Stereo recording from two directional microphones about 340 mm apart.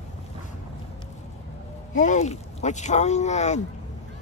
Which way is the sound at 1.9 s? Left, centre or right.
Left.